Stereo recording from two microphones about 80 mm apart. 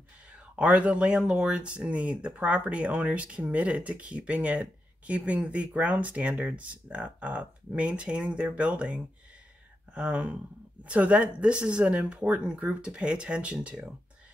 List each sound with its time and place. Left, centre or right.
0.6 s speech: centre